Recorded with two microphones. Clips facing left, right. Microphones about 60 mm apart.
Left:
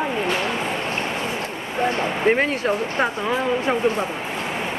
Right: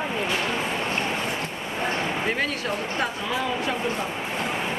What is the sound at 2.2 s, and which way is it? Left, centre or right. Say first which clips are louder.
Speech: left 7 dB; left.